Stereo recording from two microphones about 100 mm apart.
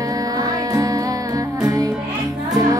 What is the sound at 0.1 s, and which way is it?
Music, 40° right (ahead or behind).